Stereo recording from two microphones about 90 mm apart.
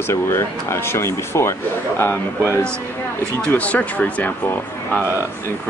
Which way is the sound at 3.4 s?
15° left (ahead or behind).